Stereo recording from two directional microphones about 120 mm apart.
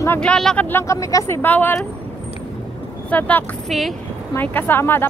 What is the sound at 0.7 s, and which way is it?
Speech, 25° left (ahead or behind).